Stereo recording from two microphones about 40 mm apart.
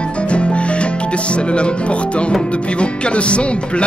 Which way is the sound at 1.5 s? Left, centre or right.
Left.